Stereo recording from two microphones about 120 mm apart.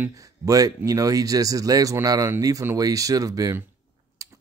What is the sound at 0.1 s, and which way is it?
Speech, 30° right (ahead or behind).